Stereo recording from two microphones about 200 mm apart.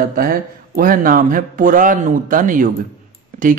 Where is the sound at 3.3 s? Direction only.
40° right (ahead or behind).